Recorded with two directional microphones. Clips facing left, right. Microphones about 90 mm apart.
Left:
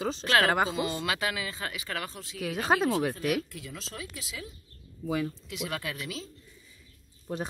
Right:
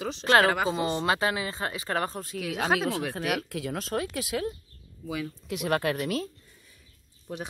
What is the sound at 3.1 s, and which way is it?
Speech, 65° right (ahead or behind).